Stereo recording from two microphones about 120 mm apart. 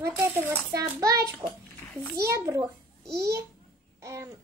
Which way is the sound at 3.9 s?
25° right (ahead or behind).